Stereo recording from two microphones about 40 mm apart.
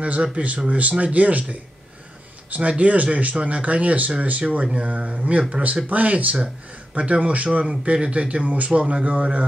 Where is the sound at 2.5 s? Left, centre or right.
Right.